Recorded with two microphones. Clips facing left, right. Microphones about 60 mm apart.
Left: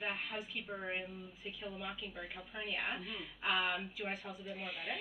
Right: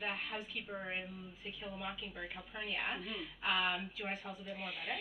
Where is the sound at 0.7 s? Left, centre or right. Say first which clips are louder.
Left 1 dB; centre.